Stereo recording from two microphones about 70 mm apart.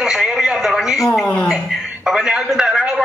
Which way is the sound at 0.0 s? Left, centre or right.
Centre.